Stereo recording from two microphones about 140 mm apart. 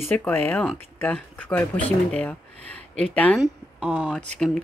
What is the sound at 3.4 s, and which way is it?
Speech, 10° right (ahead or behind).